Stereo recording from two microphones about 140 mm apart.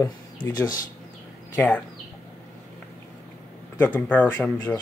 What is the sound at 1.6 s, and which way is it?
Speech, 10° left (ahead or behind).